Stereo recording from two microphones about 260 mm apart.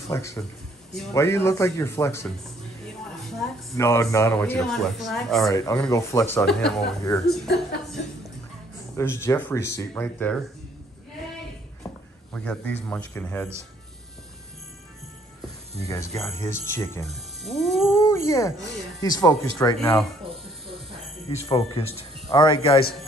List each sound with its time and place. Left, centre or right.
0.1 s speech: centre
3.7 s speech: centre
5.5 s speech: centre
7.4 s a woman's voice: left
8.9 s speech: centre
12.3 s a man's voice: centre
15.9 s speech: centre
17.4 s cat: centre
18.0 s speech: centre
21.5 s a man's voice: left